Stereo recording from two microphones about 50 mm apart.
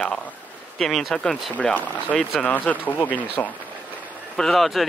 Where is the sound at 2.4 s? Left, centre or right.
Left.